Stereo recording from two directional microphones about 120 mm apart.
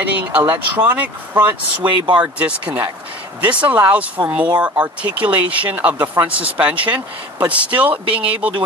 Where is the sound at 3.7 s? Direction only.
15° right (ahead or behind).